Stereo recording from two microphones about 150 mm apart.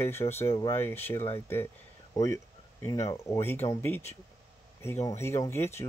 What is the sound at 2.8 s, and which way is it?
Speech, 25° left (ahead or behind).